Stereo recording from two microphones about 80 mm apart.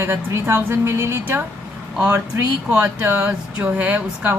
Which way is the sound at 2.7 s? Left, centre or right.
Right.